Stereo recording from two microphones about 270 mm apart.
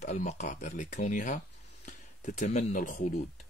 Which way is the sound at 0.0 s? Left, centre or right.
Left.